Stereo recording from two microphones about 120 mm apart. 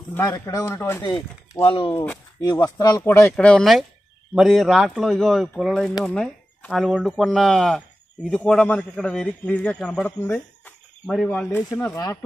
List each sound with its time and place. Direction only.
0.2 s speech: 30° left (ahead or behind)
1.6 s speech: 50° left (ahead or behind)
1.9 s a man's voice: 15° left (ahead or behind)
2.4 s speech: 35° left (ahead or behind)
3.3 s a man's voice: 5° left (ahead or behind)
11.7 s speech: 25° left (ahead or behind)